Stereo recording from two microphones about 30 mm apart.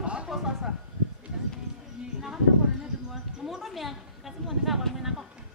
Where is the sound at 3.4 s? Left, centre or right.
Centre.